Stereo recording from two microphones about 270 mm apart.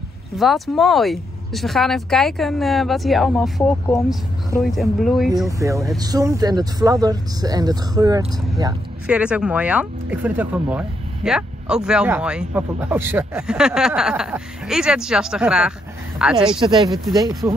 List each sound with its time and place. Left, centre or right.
0.4 s speech: centre
5.6 s speech: centre
16.5 s speech: centre